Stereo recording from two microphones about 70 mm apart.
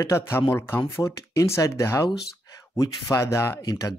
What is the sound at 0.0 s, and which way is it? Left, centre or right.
Speech, left.